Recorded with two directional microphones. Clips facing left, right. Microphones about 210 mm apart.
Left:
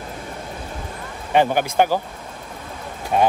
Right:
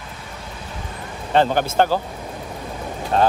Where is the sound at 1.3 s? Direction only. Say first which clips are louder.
Even; 15° left (ahead or behind).